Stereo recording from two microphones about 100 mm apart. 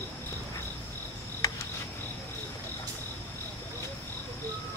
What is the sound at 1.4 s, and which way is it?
Cricket, 40° left (ahead or behind).